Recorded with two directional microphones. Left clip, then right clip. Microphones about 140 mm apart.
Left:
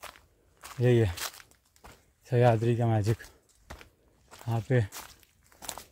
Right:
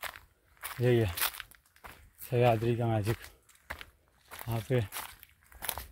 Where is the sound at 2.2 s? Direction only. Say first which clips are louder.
Left 2 dB; 35° left (ahead or behind).